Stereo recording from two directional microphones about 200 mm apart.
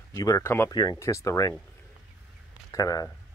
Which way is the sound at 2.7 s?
20° left (ahead or behind).